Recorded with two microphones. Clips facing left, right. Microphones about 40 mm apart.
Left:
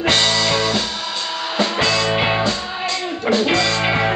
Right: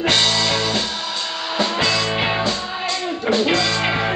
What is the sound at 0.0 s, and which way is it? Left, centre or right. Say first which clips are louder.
Music: left 1 dB; centre.